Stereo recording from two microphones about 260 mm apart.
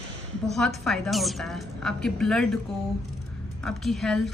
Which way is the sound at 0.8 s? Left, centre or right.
Centre.